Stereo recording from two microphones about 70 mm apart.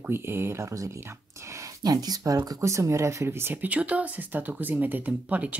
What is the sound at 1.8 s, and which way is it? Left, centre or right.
Speech, right.